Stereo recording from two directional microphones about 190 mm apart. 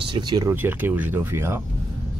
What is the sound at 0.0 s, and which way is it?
Speech, 25° right (ahead or behind).